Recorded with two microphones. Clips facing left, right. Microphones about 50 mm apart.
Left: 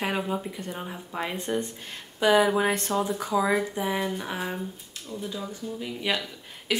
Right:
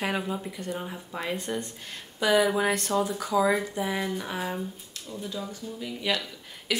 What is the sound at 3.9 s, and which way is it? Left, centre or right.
Speech, centre.